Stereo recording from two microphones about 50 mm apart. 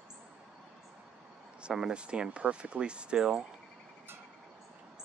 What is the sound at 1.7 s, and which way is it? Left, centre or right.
Speech, centre.